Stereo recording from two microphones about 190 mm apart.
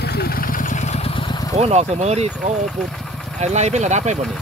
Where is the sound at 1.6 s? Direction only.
35° right (ahead or behind).